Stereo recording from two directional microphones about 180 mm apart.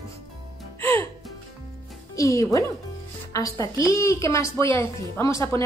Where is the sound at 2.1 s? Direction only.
20° left (ahead or behind).